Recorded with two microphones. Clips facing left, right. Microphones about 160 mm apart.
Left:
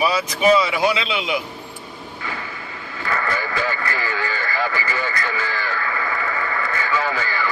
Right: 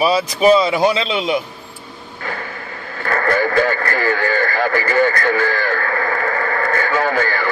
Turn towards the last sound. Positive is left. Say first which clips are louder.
# right 5 dB
turn(degrees=-55)  # may be behind; listen again after turning